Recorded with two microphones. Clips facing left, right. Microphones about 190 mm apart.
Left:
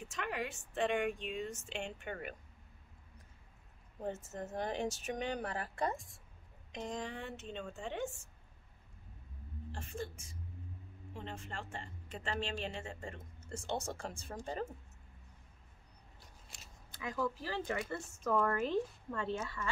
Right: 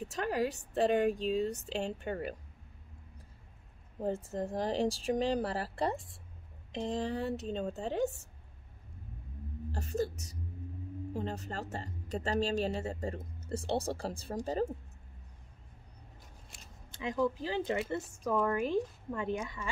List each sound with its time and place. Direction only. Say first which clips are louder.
0.0 s a woman's voice: right 8 dB; 35° right (ahead or behind)
4.0 s a woman's voice: right 7 dB; 30° right (ahead or behind)
9.7 s a woman's voice: right 9 dB; 40° right (ahead or behind)
16.5 s a sound: right 1 dB; centre (ahead or behind)
16.9 s speech: right 6 dB; 20° right (ahead or behind)
18.4 s speech: right 5 dB; 10° right (ahead or behind)